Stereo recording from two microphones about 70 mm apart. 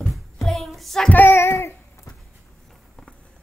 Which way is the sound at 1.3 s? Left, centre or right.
Left.